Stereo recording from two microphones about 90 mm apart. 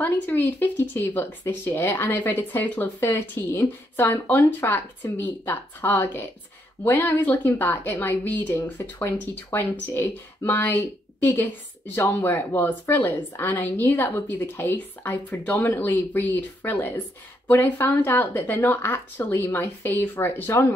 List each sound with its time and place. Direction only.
0.0 s speech: 25° left (ahead or behind)
11.9 s speech: 35° left (ahead or behind)